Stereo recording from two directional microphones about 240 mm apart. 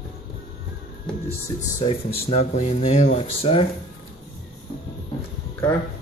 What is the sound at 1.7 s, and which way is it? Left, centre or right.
Speech, left.